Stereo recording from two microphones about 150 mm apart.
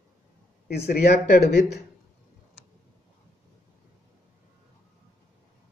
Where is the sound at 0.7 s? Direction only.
90° left.